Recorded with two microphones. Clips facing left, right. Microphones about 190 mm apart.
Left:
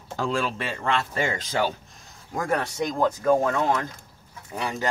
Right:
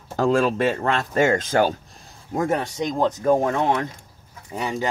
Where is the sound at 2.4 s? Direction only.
20° right (ahead or behind).